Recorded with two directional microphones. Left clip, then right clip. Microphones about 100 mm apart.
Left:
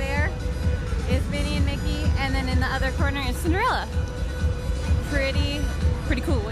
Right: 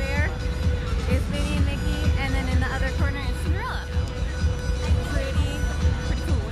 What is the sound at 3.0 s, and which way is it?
Speech, 20° left (ahead or behind).